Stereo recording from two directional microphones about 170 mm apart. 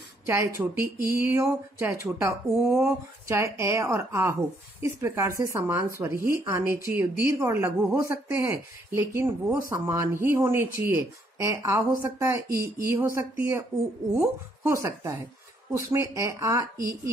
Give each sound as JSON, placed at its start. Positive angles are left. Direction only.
{"t": 0.3, "sound": "speech", "side_deg": -15}
{"t": 12.5, "sound": "speech", "side_deg": -60}
{"t": 12.9, "sound": "speech", "side_deg": -15}